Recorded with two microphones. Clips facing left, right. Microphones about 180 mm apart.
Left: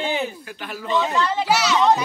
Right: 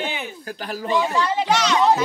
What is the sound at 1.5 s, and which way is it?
Speech, 5° left (ahead or behind).